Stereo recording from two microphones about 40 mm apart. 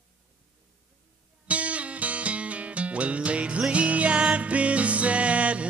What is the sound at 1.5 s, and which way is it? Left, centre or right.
Music, right.